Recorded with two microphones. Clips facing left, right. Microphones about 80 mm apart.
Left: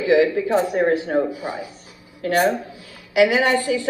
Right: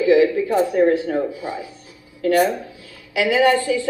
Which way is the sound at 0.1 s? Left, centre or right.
Left.